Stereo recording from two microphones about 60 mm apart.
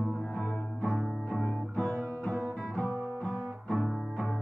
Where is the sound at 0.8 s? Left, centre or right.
Centre.